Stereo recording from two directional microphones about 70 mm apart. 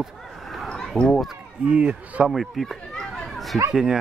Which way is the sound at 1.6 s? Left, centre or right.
Centre.